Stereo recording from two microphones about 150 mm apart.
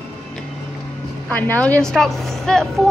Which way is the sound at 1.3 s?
10° left (ahead or behind).